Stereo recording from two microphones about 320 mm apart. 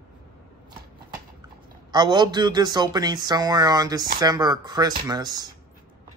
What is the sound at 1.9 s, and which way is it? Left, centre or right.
Speech, centre.